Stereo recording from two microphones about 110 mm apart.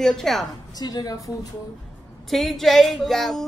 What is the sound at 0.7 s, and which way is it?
Speech, 35° left (ahead or behind).